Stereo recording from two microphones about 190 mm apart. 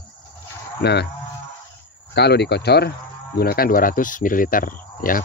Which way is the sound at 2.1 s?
60° left (ahead or behind).